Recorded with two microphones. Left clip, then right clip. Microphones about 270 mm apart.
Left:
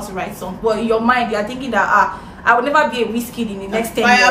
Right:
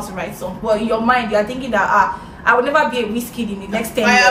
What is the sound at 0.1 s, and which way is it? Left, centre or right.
A woman's voice, centre.